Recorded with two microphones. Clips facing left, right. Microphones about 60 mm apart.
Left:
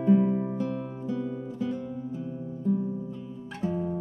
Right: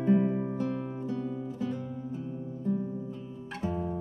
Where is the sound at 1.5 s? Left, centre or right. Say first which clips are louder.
Left 5 dB; right.